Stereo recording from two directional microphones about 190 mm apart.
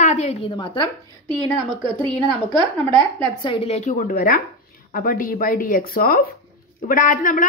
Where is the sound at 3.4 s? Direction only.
25° left (ahead or behind).